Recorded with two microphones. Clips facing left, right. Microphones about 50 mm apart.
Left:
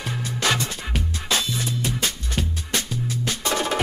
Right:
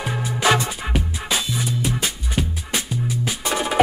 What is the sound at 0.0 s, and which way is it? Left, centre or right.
Music, centre.